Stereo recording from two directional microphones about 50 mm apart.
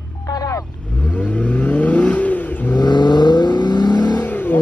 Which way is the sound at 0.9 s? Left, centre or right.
Left.